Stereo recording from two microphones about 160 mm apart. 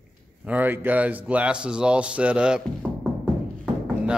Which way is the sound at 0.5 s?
10° right (ahead or behind).